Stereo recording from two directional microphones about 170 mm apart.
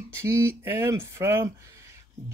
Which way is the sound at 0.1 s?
15° right (ahead or behind).